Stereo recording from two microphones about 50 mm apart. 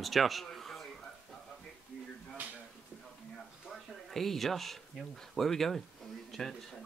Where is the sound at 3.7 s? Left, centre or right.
Centre.